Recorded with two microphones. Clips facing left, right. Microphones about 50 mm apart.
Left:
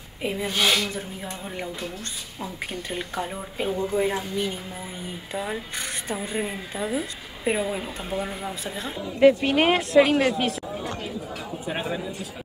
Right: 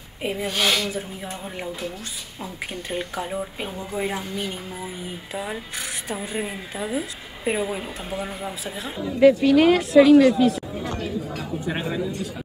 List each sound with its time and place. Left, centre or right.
0.2 s speech: centre
9.2 s a woman's voice: left